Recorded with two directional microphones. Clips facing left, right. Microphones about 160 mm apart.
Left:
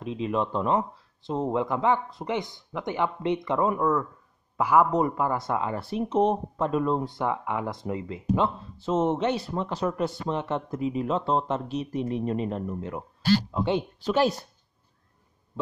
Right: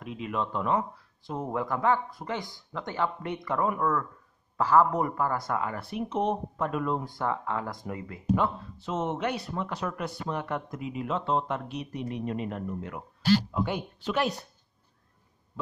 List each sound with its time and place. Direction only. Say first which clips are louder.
0.0 s speech: left 5 dB; 30° left (ahead or behind)